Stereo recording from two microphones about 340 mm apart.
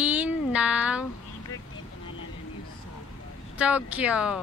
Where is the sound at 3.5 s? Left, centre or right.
Centre.